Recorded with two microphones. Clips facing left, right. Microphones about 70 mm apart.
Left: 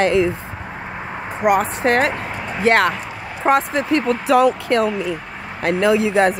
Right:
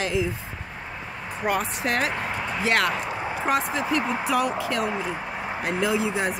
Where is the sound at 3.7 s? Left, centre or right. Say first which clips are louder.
Left 6 dB; left.